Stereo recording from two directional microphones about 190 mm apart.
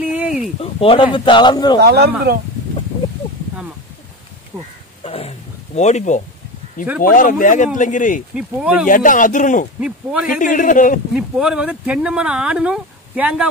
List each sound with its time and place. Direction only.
0.0 s a sound: 5° right (ahead or behind)
0.6 s speech: 30° left (ahead or behind)
1.8 s speech: 60° right (ahead or behind)
5.0 s a sound: 30° left (ahead or behind)
5.8 s speech: 40° left (ahead or behind)
8.4 s speech: 5° right (ahead or behind)
8.8 s speech: 45° left (ahead or behind)
9.8 s speech: 5° right (ahead or behind)
10.4 s speech: 45° left (ahead or behind)
11.1 s speech: 5° right (ahead or behind)